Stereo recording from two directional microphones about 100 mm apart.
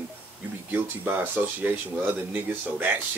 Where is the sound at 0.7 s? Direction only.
20° right (ahead or behind).